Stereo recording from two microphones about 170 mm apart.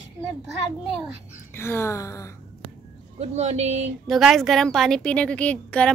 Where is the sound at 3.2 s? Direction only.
40° right (ahead or behind).